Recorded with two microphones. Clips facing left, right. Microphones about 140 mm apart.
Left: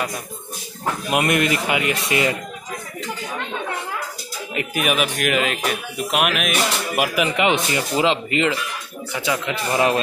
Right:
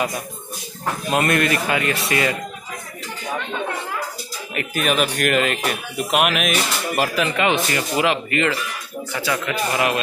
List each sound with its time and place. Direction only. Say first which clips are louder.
1.1 s speech: even; 15° left (ahead or behind)
4.6 s speech: right 1 dB; 10° left (ahead or behind)
7.2 s speech: left 2 dB; 15° left (ahead or behind)